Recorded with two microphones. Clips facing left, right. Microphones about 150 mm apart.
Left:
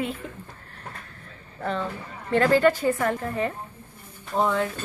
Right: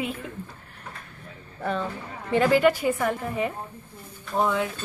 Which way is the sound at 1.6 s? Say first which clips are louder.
Even; 10° right (ahead or behind).